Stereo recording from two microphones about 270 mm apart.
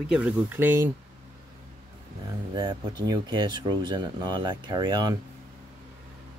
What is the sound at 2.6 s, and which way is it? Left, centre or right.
Speech, centre.